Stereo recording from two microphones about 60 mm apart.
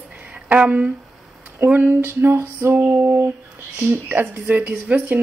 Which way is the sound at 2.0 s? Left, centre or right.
Right.